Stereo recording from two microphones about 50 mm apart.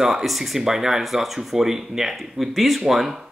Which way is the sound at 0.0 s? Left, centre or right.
Centre.